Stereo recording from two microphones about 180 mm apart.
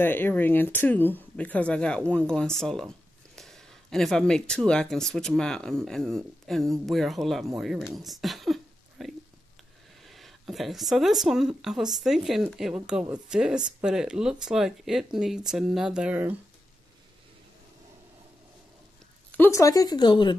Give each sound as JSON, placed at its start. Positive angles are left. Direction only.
{"t": 0.0, "sound": "speech", "side_deg": 10}
{"t": 8.0, "sound": "a sound", "side_deg": 0}
{"t": 10.0, "sound": "speech", "side_deg": 0}
{"t": 19.3, "sound": "speech", "side_deg": 15}